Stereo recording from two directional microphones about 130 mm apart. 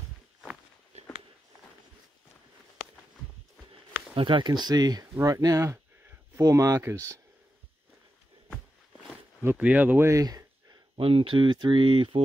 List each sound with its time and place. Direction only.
0.9 s a sound: 55° right (ahead or behind)
4.1 s speech: 40° right (ahead or behind); by 7.2 s 20° right (ahead or behind)
9.4 s speech: 15° right (ahead or behind); by 10.8 s 30° right (ahead or behind)
11.0 s speech: 45° right (ahead or behind)